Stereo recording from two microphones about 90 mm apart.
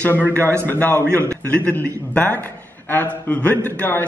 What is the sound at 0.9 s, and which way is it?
Speech, 30° right (ahead or behind).